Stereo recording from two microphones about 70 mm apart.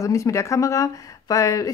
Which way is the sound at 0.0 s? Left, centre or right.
Left.